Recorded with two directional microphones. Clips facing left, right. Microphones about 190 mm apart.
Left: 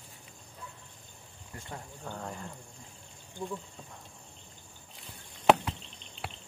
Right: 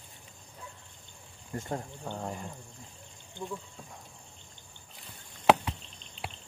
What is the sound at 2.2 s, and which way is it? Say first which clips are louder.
Speech: right 3 dB; 15° right (ahead or behind).